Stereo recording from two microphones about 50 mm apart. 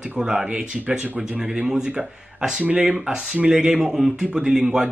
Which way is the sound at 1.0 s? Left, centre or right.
Right.